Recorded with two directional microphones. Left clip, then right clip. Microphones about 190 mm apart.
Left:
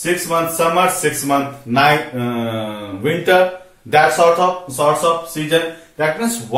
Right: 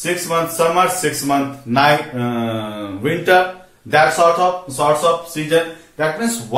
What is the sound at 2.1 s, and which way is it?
Mantra, 15° right (ahead or behind).